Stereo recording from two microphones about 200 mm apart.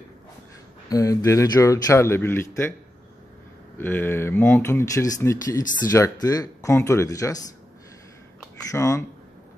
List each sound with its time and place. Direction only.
0.8 s speech: 15° left (ahead or behind)
3.7 s speech: 10° left (ahead or behind)
8.7 s speech: 15° left (ahead or behind)